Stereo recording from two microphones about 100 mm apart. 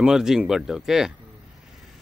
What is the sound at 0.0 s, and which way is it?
Speech, 5° right (ahead or behind).